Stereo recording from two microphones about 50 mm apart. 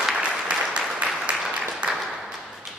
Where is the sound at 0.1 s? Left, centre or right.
Right.